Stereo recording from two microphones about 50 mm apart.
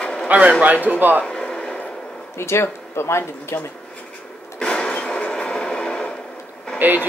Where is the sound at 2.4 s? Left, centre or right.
Left.